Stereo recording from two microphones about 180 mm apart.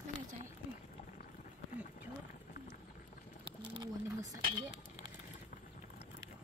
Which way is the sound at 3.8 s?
20° right (ahead or behind).